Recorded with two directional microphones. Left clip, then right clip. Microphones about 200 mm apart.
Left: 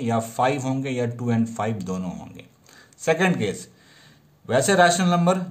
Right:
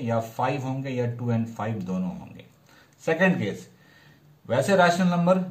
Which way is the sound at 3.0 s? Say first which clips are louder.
Left 2 dB; 45° left (ahead or behind).